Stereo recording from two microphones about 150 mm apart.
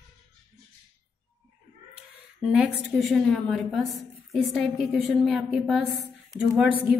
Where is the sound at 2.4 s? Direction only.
5° right (ahead or behind).